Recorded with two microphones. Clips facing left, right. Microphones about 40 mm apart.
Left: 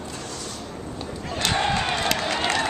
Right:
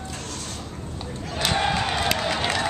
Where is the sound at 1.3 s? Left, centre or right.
Centre.